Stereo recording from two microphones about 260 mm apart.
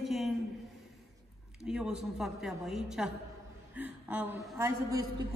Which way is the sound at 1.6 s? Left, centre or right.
Centre.